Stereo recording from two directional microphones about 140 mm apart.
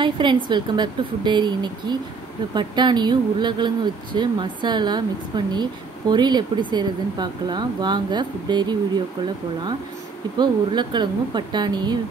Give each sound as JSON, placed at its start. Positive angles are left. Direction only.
{"t": 0.0, "sound": "speech", "side_deg": -35}
{"t": 10.3, "sound": "speech", "side_deg": -30}